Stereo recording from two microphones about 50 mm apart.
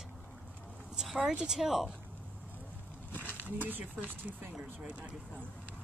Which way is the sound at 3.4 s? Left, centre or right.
Right.